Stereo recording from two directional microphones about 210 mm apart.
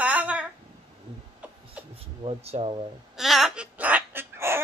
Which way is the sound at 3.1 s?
Centre (ahead or behind).